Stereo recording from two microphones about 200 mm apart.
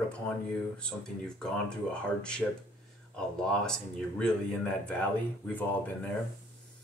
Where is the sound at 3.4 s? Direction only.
5° left (ahead or behind).